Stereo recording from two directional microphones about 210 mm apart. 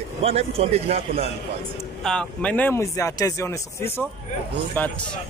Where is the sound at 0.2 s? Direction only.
30° right (ahead or behind).